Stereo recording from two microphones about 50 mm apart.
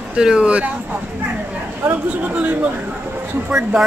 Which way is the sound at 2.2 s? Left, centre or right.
Right.